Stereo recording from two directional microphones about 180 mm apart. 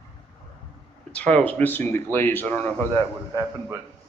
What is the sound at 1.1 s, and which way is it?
Speech, 5° left (ahead or behind).